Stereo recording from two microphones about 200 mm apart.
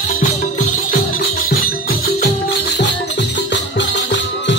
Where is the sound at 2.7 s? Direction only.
60° left (ahead or behind).